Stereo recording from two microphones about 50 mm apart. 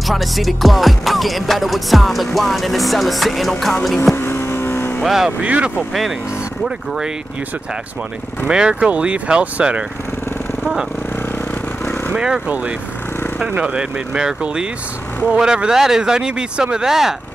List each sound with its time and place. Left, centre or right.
0.0 s music: centre
4.1 s vehicle: left
5.0 s speech: centre
5.4 s speech: right
8.5 s speech: centre
13.6 s speech: right